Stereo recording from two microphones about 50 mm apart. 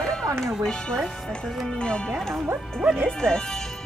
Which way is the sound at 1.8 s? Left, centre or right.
Centre.